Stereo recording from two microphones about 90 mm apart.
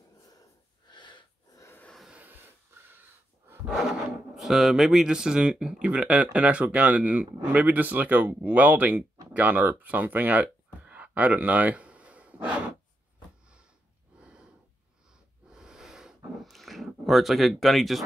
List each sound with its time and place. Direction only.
0.8 s snort: 60° left (ahead or behind)
2.0 s a sound: 15° right (ahead or behind)
4.4 s speech: 5° right (ahead or behind)
14.1 s snort: 10° right (ahead or behind)
15.4 s wheeze: 10° right (ahead or behind)
16.4 s a sound: centre (ahead or behind)